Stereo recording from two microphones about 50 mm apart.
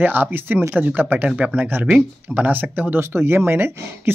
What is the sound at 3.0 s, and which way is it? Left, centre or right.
Speech, right.